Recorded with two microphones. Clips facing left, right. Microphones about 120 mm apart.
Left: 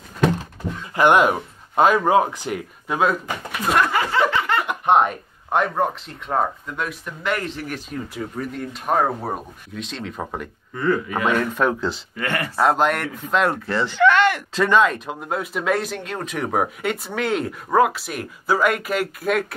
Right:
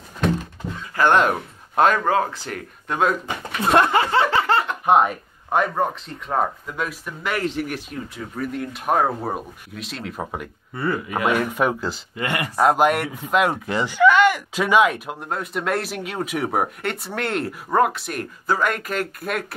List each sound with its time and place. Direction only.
0.9 s speech: 15° left (ahead or behind)
1.2 s speech: 5° left (ahead or behind)
2.0 s speech: 15° left (ahead or behind)
2.9 s speech: centre (ahead or behind)
3.7 s snicker: 30° right (ahead or behind)
4.8 s speech: centre (ahead or behind)
15.1 s speech: 5° left (ahead or behind)